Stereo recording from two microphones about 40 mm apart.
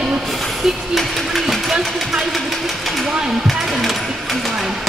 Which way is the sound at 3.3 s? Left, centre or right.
Centre.